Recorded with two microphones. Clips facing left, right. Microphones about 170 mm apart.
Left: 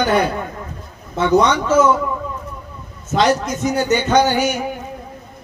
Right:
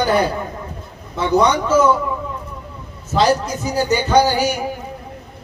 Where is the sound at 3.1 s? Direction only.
30° right (ahead or behind).